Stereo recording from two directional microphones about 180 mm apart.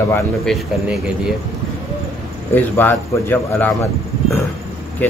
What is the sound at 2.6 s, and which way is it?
Speech, 10° left (ahead or behind).